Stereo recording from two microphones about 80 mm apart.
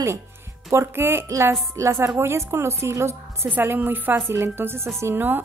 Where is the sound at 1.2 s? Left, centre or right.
Right.